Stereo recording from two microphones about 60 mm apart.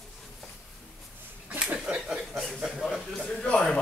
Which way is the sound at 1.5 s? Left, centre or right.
Right.